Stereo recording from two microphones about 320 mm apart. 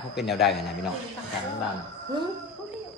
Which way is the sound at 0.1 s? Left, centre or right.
Centre.